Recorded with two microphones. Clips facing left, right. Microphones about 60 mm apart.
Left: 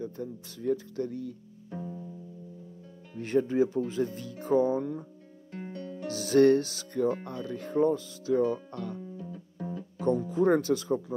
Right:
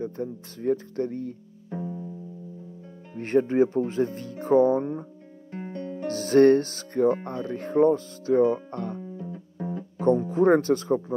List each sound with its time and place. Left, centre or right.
0.0 s speech: right
1.7 s music: centre
3.2 s speech: right
9.0 s music: right